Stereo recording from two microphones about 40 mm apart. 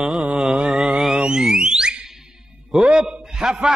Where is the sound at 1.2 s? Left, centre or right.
Right.